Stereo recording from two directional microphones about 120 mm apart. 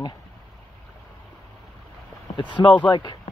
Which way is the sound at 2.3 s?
45° left (ahead or behind).